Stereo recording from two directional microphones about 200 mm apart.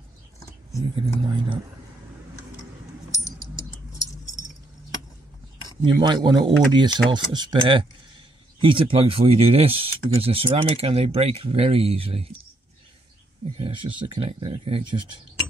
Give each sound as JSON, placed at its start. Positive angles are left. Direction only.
{"t": 0.9, "sound": "speech", "side_deg": -25}
{"t": 5.8, "sound": "speech", "side_deg": -20}
{"t": 13.6, "sound": "speech", "side_deg": -25}